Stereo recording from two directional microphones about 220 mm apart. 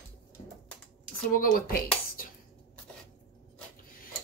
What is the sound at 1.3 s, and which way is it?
Speech, 40° left (ahead or behind).